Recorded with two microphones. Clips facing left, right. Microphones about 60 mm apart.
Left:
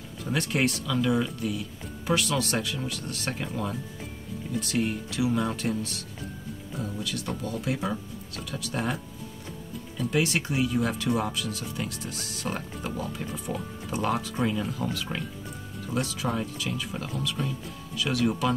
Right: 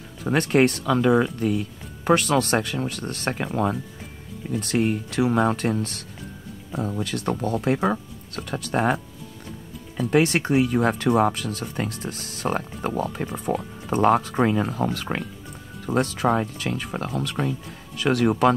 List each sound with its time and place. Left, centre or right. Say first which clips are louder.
0.2 s speech: right 8 dB; right
4.5 s speech: right 5 dB; right
10.1 s speech: right 7 dB; right
13.3 s speech: right 6 dB; right
13.9 s speech: right 9 dB; right